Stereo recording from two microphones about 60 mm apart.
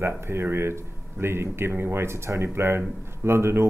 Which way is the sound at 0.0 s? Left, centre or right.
Right.